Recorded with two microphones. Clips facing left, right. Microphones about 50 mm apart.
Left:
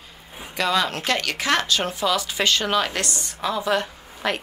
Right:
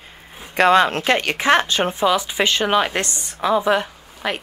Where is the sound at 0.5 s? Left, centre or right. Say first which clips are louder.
Right 8 dB; right.